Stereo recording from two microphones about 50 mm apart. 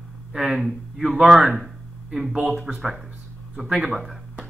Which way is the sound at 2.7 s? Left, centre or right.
Centre.